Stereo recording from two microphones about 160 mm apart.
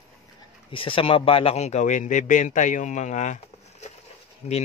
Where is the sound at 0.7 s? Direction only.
35° left (ahead or behind); by 3.3 s 50° left (ahead or behind).